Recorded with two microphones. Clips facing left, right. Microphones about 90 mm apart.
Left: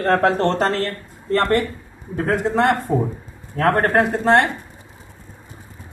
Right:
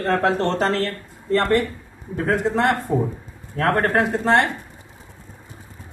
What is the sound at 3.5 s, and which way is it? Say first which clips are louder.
Speech: left 2 dB; 45° left (ahead or behind).